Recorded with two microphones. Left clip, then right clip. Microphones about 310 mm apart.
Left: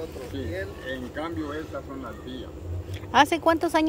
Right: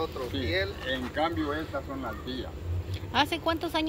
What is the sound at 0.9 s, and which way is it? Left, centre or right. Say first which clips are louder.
Speech: right 3 dB; centre.